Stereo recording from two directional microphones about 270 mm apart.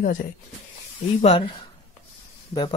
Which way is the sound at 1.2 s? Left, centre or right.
Left.